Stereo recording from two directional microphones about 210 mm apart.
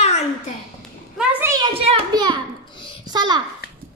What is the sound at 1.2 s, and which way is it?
A child's voice, 10° right (ahead or behind).